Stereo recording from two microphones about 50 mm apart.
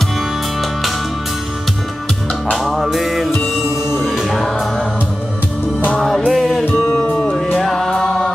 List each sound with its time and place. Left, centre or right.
2.5 s music: centre
5.9 s music: centre
7.0 s music: left
7.6 s music: centre